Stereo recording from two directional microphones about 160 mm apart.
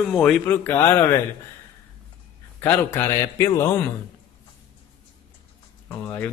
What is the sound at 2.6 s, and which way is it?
A man's voice, 15° left (ahead or behind).